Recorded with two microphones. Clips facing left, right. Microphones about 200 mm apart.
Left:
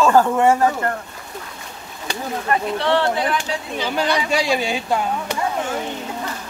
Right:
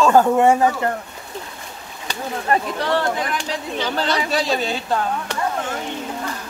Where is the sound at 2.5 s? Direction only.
30° right (ahead or behind).